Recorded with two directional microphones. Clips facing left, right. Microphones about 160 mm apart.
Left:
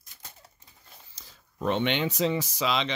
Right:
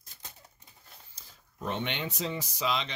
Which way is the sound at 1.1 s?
80° left.